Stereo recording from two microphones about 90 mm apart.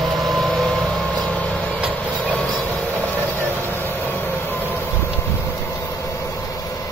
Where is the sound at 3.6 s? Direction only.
25° left (ahead or behind).